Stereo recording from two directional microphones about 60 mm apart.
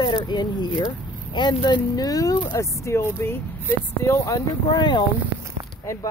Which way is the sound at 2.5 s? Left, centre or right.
Left.